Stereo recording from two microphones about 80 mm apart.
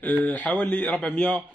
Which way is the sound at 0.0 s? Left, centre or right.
Centre.